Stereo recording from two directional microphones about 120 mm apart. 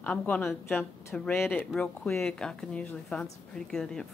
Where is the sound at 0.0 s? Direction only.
10° left (ahead or behind).